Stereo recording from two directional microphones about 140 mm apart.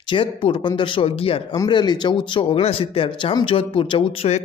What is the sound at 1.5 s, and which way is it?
Speech, 30° left (ahead or behind).